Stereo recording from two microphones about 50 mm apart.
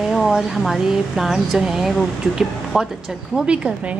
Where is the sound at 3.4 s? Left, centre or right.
Right.